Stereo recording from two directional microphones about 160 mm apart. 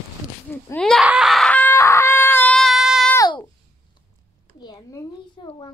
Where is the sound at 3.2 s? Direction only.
25° left (ahead or behind).